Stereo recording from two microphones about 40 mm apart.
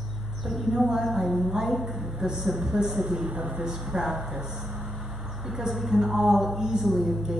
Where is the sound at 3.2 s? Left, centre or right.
Right.